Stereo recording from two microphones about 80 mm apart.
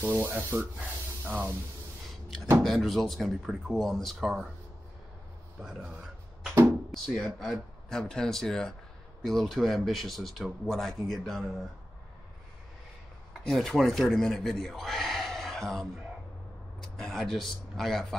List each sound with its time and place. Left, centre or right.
0.0 s sanding: right
0.7 s speech: right
2.6 s speech: centre
5.6 s a sound: centre
6.9 s speech: centre
13.4 s speech: centre